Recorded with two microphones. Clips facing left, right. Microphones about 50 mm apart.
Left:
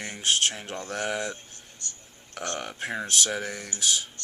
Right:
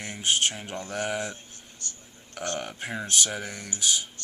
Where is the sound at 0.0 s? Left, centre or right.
Centre.